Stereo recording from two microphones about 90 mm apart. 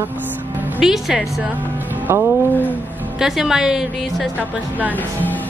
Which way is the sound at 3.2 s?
5° right (ahead or behind).